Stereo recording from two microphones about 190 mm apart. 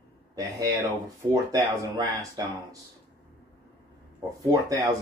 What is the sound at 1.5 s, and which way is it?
Speech, 20° right (ahead or behind).